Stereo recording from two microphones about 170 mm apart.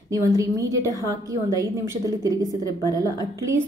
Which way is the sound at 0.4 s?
20° right (ahead or behind).